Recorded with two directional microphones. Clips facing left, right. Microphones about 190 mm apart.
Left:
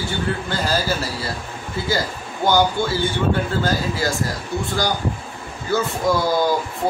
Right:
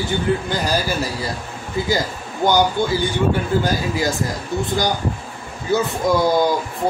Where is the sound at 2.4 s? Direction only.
15° right (ahead or behind).